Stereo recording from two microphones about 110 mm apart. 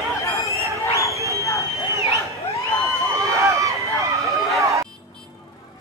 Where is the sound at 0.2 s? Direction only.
30° left (ahead or behind).